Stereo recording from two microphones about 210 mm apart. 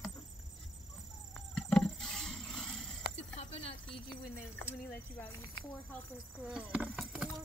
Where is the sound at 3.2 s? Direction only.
30° left (ahead or behind).